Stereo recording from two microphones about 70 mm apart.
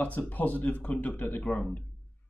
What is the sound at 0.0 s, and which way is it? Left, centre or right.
Speech, left.